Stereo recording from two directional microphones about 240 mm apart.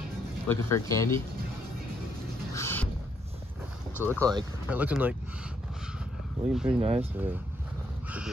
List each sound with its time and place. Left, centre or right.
0.5 s speech: centre
2.5 s rodents: centre
3.9 s speech: centre
6.5 s speech: centre
6.8 s speech: right